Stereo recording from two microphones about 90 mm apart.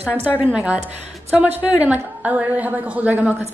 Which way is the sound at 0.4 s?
15° right (ahead or behind).